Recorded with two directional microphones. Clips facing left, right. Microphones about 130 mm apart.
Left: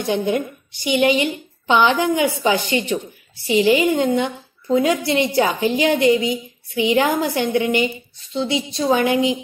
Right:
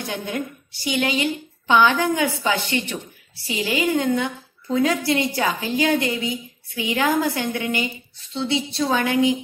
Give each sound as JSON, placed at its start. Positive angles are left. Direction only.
{"t": 0.1, "sound": "a woman's voice", "side_deg": 20}